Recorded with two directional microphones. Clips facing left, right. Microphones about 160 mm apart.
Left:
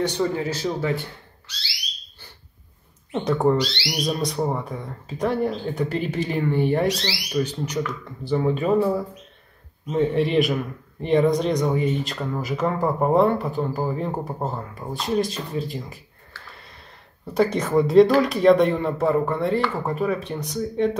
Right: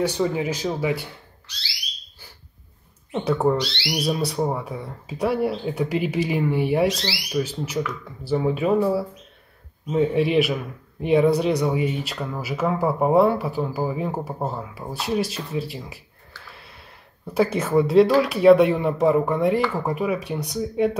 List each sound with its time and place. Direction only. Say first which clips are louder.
0.0 s a man's voice: right 1 dB; 10° right (ahead or behind)
3.1 s a man's voice: left 1 dB; 5° right (ahead or behind)